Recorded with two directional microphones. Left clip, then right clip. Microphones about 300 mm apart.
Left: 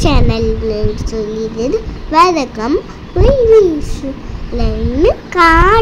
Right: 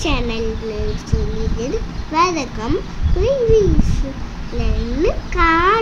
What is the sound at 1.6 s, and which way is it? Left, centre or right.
A child's voice, centre.